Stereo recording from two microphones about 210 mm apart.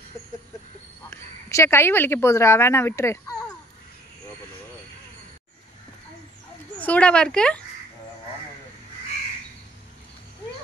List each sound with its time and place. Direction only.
1.1 s a woman's voice: 15° left (ahead or behind)
6.8 s speech: 5° left (ahead or behind)